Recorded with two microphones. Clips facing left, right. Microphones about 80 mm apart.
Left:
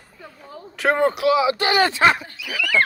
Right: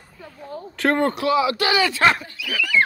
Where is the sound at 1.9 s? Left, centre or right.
Centre.